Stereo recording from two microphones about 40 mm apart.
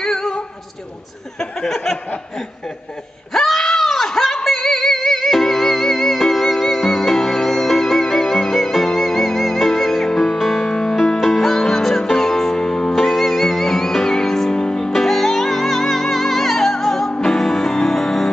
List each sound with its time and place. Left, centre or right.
0.0 s singing: centre
1.4 s a sound: centre
3.3 s music: centre
10.6 s music: left
10.9 s music: centre
14.9 s music: centre